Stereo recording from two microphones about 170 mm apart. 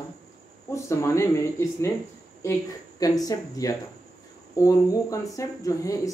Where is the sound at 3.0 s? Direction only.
20° left (ahead or behind).